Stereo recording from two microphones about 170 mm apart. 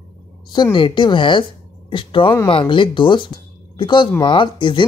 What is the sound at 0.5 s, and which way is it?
A woman's voice, 25° left (ahead or behind).